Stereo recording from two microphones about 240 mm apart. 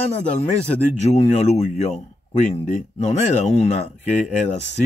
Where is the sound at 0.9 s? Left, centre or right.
Left.